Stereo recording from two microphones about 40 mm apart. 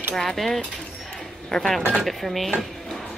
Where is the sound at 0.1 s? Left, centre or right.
Centre.